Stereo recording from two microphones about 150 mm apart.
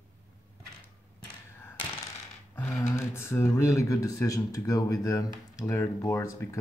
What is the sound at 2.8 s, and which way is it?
Speech, 15° left (ahead or behind).